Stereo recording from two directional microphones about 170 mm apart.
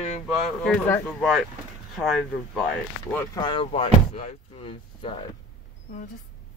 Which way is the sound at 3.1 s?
15° left (ahead or behind).